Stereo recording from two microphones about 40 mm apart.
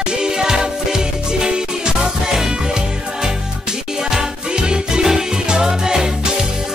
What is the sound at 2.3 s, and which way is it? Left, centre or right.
Music, centre.